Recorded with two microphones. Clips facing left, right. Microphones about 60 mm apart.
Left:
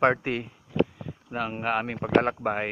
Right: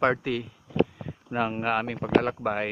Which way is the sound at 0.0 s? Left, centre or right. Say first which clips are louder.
Left 1 dB; left.